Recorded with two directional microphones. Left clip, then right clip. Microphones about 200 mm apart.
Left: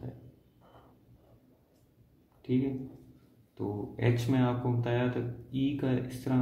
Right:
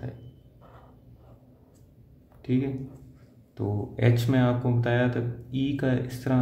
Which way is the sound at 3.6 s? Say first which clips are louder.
Right 5 dB; 35° right (ahead or behind).